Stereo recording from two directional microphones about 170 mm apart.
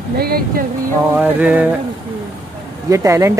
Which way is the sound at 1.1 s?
10° right (ahead or behind).